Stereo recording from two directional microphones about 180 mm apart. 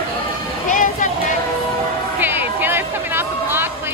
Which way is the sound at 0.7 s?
45° left (ahead or behind).